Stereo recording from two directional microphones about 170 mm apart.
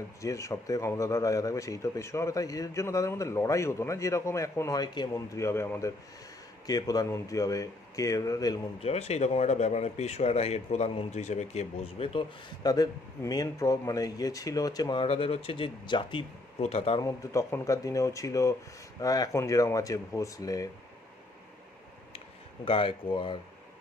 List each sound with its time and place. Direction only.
0.2 s speech: 20° left (ahead or behind)
8.8 s speech: 40° left (ahead or behind)
17.0 s speech: 15° left (ahead or behind)
22.7 s speech: 30° left (ahead or behind)